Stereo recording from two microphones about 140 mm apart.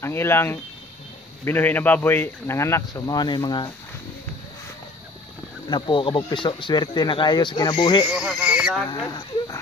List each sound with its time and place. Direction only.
0.0 s speech: 15° left (ahead or behind)
5.7 s speech: 35° left (ahead or behind)
8.1 s speech: 5° right (ahead or behind)
8.8 s speech: 25° left (ahead or behind)